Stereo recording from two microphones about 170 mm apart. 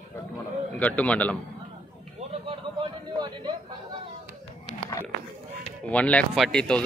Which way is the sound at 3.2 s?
25° right (ahead or behind).